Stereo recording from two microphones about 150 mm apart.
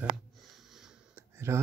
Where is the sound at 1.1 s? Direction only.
15° right (ahead or behind).